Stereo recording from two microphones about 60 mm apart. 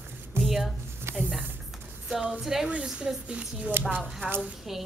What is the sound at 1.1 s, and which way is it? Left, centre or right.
Music, right.